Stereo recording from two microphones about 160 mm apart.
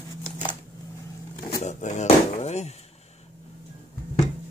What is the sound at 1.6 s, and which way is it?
Drawer open or close, 50° left (ahead or behind).